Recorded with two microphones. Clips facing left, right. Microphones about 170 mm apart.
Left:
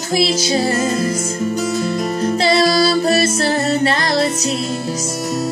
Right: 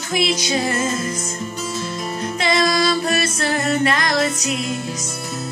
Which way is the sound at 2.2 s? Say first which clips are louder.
Left 4 dB; 35° left (ahead or behind).